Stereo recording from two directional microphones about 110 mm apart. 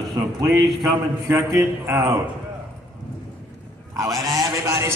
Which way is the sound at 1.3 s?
25° right (ahead or behind).